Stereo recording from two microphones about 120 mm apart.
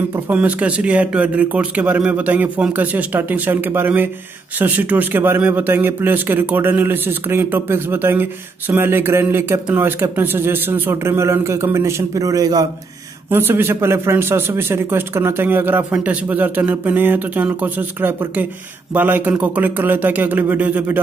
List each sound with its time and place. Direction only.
0.1 s a man's voice: 10° right (ahead or behind); by 12.6 s 30° right (ahead or behind)
13.3 s a man's voice: 20° right (ahead or behind)